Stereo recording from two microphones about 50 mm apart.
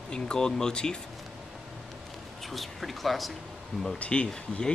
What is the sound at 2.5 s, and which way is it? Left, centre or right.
Speech, centre.